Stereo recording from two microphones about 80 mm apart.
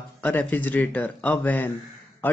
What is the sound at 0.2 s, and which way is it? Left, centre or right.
Speech, left.